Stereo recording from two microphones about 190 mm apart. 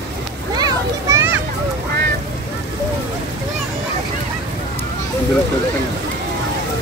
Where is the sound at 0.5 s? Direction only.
20° right (ahead or behind).